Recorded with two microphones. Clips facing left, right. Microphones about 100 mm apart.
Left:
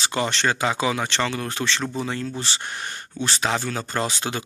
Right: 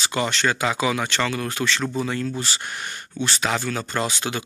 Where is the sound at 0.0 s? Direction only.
35° left (ahead or behind).